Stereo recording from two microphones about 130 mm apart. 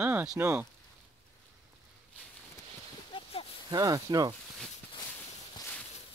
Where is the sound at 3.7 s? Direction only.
30° right (ahead or behind).